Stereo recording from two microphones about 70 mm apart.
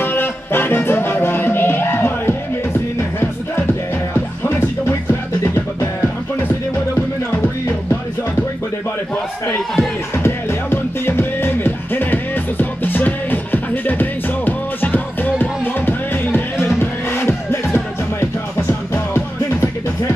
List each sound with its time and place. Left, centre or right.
0.0 s music: left
5.4 s music: left
10.1 s music: left